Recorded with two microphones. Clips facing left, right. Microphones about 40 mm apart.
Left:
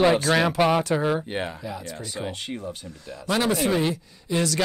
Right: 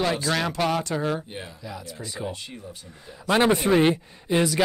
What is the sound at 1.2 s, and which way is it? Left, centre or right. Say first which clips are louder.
Speech: left 8 dB; left.